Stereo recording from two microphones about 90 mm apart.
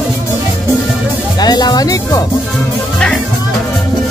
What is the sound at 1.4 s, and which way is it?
Speech, 50° left (ahead or behind).